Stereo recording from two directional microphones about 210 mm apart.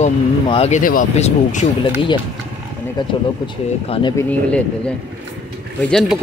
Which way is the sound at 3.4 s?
20° left (ahead or behind).